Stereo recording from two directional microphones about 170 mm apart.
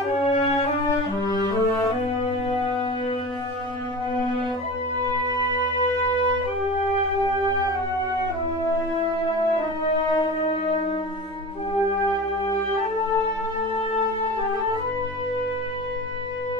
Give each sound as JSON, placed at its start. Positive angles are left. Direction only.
{"t": 0.2, "sound": "music", "side_deg": 40}
{"t": 1.2, "sound": "music", "side_deg": 20}